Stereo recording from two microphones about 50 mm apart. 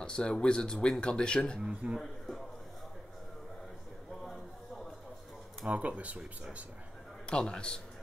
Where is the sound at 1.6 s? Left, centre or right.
Centre.